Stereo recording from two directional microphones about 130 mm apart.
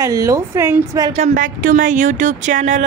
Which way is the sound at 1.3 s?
90° right.